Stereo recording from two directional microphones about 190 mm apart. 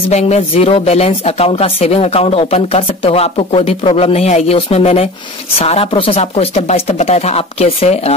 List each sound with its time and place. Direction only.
0.1 s speech: 35° left (ahead or behind)